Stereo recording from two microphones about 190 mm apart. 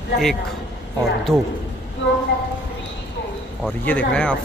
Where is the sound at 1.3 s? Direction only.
15° right (ahead or behind).